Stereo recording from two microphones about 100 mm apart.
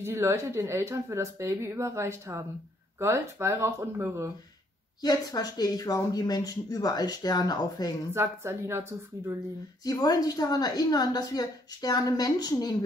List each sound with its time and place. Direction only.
0.0 s speech: 25° right (ahead or behind)
5.0 s speech: 40° left (ahead or behind)
8.1 s speech: 25° right (ahead or behind)
9.8 s speech: 40° left (ahead or behind)